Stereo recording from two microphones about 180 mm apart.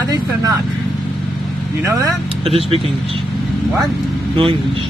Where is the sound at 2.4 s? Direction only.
30° right (ahead or behind).